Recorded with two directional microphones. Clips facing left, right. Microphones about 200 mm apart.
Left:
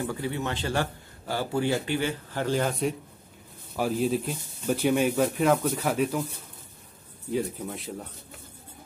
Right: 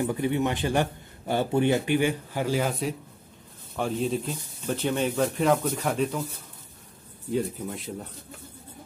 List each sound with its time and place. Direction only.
0.0 s a man's voice: 20° right (ahead or behind); by 6.2 s 5° left (ahead or behind)
7.2 s speech: centre (ahead or behind)